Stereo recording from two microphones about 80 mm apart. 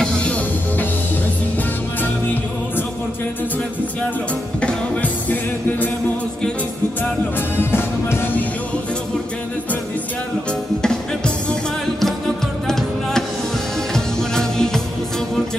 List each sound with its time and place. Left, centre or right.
0.0 s music: centre
4.6 s music: centre
7.0 s music: left
10.8 s music: centre
12.6 s music: centre